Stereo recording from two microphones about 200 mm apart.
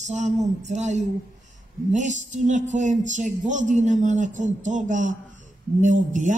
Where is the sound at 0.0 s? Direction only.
35° right (ahead or behind).